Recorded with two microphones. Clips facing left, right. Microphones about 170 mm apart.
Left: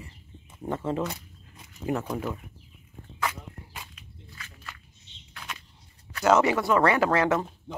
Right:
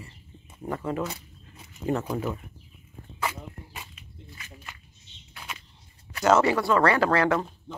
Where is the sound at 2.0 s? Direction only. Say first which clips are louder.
Right 2 dB; 5° right (ahead or behind).